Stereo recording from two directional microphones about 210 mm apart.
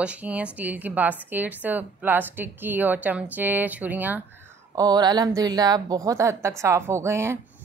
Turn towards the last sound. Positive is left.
turn(degrees=-15)  # may be behind; listen again after turning